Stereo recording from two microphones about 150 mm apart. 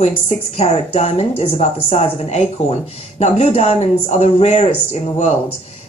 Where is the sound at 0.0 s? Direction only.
45° left (ahead or behind).